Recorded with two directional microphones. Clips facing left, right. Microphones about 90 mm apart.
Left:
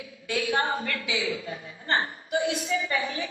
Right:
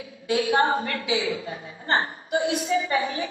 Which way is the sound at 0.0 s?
35° right (ahead or behind).